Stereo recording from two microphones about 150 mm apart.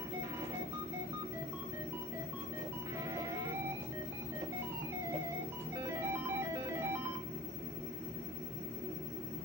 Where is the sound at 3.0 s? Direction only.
20° right (ahead or behind).